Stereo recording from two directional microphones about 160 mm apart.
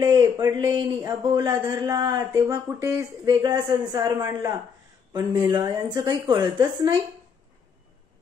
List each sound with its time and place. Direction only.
0.0 s a man's voice: 25° right (ahead or behind)